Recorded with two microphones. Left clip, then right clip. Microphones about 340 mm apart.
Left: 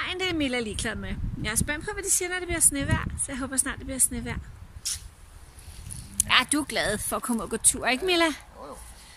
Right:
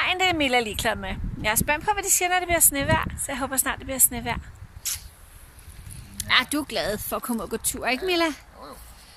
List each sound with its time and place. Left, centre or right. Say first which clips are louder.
0.0 s speech: right 6 dB; centre
4.8 s a sound: right 1 dB; centre
6.1 s speech: right 1 dB; centre